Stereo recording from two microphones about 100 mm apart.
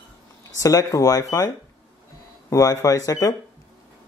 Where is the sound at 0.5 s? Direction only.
35° left (ahead or behind).